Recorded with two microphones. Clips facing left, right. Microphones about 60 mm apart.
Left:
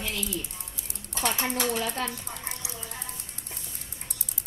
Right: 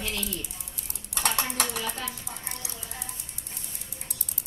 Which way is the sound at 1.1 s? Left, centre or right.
Right.